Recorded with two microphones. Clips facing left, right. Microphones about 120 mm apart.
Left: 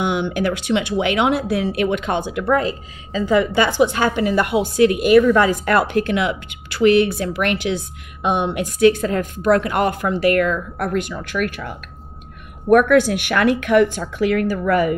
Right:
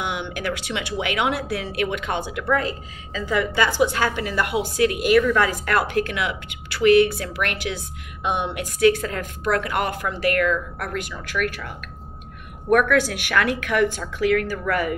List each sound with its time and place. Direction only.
0.0 s speech: 25° left (ahead or behind)
12.6 s speech: 25° left (ahead or behind)